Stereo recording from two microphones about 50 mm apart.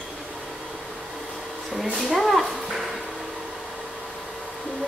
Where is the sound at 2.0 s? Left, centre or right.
Centre.